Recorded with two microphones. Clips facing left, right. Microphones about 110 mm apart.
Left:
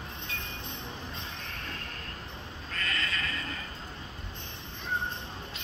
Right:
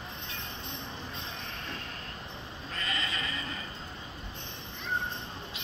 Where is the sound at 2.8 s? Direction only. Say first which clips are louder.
Left 1 dB; 10° right (ahead or behind).